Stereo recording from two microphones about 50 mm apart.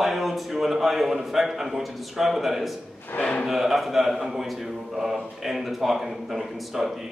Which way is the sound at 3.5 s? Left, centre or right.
Centre.